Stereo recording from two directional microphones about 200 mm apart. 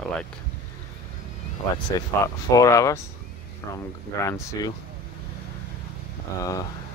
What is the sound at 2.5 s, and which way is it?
Mantra, 15° left (ahead or behind).